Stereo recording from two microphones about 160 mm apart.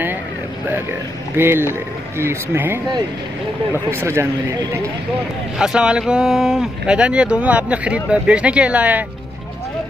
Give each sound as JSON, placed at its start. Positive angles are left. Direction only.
{"t": 1.3, "sound": "speech", "side_deg": -15}
{"t": 5.6, "sound": "speech", "side_deg": -5}